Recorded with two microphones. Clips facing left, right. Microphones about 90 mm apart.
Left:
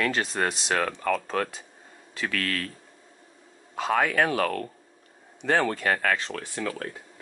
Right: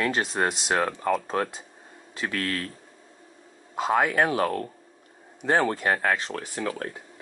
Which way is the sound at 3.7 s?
20° right (ahead or behind).